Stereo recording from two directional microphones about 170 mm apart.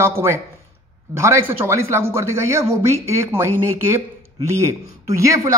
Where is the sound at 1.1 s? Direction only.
15° right (ahead or behind).